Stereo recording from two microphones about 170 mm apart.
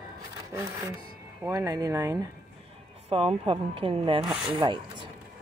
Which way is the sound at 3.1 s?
35° right (ahead or behind).